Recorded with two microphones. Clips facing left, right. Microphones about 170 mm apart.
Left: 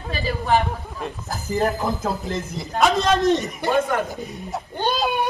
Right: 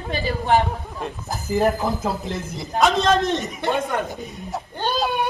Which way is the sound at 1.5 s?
Centre (ahead or behind).